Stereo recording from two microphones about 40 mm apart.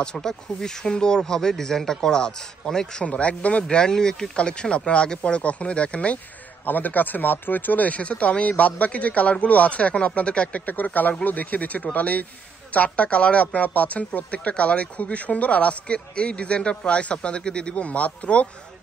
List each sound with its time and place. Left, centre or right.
0.0 s speech: left
3.0 s speech: left
3.6 s speech: centre
6.6 s speech: left
10.5 s speech: left